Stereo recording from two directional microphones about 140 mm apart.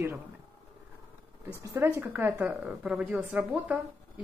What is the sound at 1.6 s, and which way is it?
Speech, 20° right (ahead or behind).